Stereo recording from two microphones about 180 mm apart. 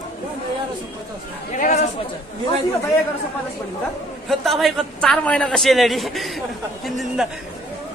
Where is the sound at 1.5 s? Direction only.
40° left (ahead or behind).